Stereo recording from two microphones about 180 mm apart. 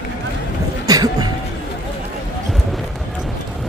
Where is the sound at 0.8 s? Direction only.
20° right (ahead or behind).